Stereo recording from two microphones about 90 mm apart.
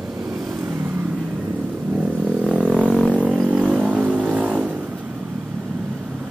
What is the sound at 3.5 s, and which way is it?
Vehicle, 15° right (ahead or behind).